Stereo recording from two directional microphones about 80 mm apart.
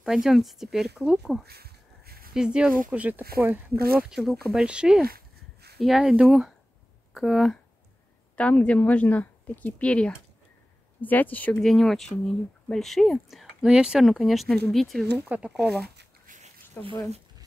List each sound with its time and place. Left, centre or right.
0.0 s speech: centre
2.3 s speech: centre
4.1 s speech: centre
8.4 s speech: centre
11.6 s speech: centre
15.2 s speech: centre
15.5 s speech: centre
16.8 s speech: left